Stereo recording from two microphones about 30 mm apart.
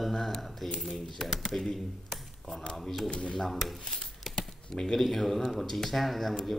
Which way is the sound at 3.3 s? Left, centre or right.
Centre.